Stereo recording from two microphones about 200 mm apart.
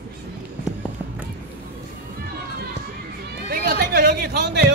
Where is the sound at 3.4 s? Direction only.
50° right (ahead or behind).